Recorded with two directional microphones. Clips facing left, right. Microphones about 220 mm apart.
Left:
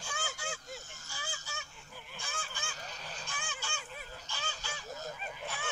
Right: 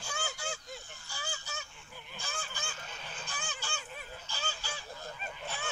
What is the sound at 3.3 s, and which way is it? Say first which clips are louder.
Goose: right 3 dB; 35° right (ahead or behind).